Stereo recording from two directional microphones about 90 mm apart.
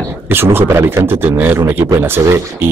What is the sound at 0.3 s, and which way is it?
Speech, 25° right (ahead or behind).